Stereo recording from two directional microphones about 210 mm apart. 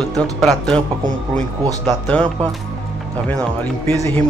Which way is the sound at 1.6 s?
20° right (ahead or behind).